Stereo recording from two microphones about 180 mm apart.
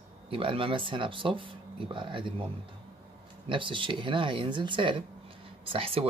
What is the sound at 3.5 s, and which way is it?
Speech, 30° right (ahead or behind).